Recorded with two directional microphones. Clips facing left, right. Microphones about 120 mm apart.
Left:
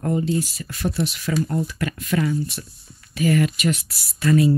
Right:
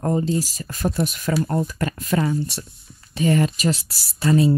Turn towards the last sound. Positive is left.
turn(degrees=-30)  # may be behind; listen again after turning